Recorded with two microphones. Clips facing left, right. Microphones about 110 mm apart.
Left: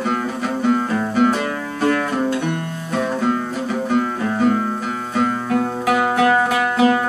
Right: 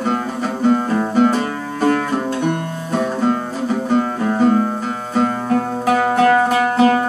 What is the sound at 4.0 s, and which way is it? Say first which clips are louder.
Music: right 2 dB; 30° right (ahead or behind).